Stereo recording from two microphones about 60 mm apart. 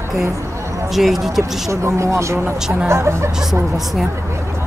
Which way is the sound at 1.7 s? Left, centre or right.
Right.